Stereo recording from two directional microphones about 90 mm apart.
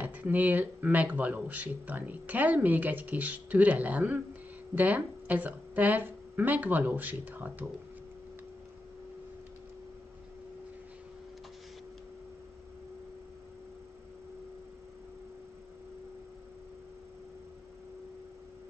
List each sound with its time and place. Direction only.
0.0 s speech: 20° right (ahead or behind)